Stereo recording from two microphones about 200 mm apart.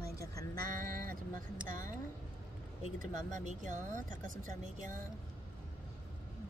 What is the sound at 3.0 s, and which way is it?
Speech, 40° right (ahead or behind).